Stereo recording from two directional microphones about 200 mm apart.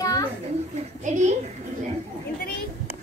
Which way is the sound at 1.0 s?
35° right (ahead or behind).